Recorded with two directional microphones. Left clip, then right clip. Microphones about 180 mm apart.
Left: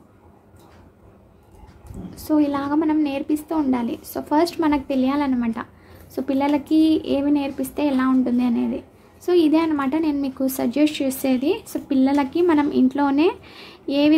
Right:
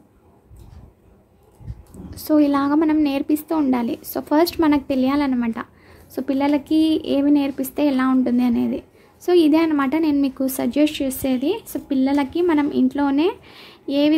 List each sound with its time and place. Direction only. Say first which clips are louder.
2.0 s a woman's voice: right 3 dB; 25° right (ahead or behind); by 14.1 s 5° right (ahead or behind)